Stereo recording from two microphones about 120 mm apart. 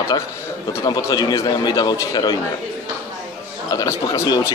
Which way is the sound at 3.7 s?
30° left (ahead or behind).